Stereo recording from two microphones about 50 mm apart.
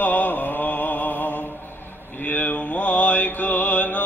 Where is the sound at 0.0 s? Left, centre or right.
Left.